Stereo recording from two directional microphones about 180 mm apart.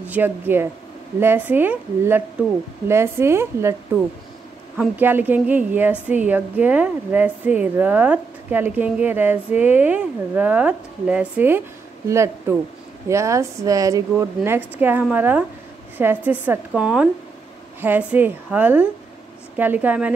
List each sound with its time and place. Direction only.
0.1 s a woman's voice: 10° right (ahead or behind)